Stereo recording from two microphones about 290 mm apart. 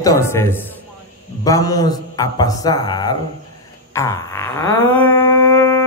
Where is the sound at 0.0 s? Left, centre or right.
Centre.